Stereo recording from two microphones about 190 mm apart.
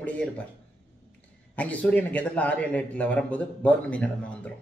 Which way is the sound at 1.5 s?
5° left (ahead or behind).